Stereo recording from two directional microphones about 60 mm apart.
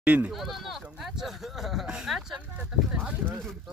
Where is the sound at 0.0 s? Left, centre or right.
Right.